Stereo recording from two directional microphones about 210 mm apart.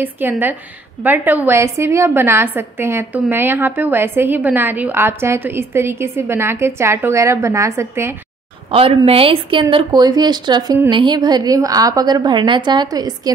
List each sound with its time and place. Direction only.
0.0 s a woman's voice: 10° right (ahead or behind)
8.7 s speech: 25° right (ahead or behind)